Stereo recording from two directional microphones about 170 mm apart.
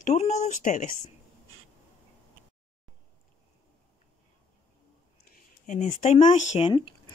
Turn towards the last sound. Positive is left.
turn(degrees=45)  # may be behind; listen again after turning